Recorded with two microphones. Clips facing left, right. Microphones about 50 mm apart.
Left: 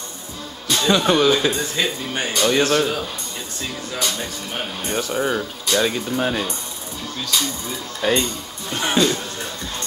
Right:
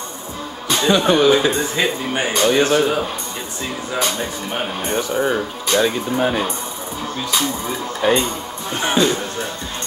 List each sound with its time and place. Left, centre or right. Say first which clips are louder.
0.7 s speech: right 2 dB; centre